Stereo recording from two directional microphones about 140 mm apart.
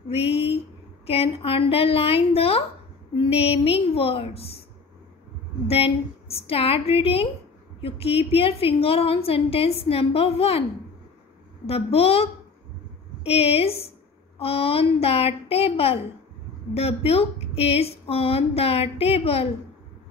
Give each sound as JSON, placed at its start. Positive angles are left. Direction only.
{"t": 0.1, "sound": "a woman's voice", "side_deg": 45}
{"t": 5.7, "sound": "a woman's voice", "side_deg": 45}
{"t": 11.6, "sound": "a woman's voice", "side_deg": 45}